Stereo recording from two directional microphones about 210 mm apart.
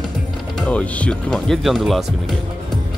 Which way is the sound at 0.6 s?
5° left (ahead or behind).